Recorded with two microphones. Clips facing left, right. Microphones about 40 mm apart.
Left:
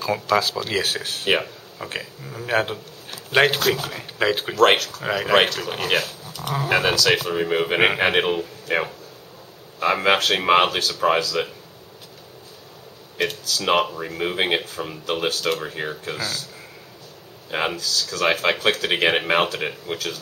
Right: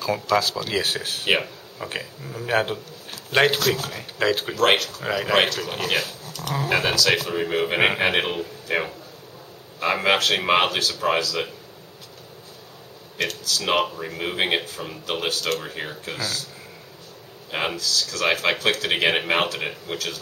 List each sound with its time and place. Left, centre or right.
0.0 s speech: centre
5.0 s speech: centre
13.2 s speech: centre
17.5 s speech: centre